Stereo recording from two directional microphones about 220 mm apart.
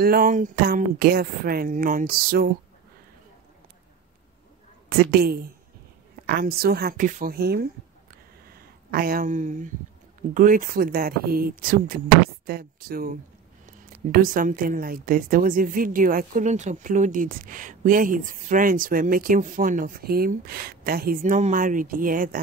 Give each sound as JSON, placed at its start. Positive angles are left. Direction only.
{"t": 0.0, "sound": "speech", "side_deg": -40}
{"t": 4.8, "sound": "a woman's voice", "side_deg": -45}